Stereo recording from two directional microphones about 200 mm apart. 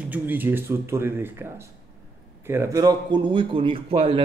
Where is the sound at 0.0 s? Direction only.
10° right (ahead or behind).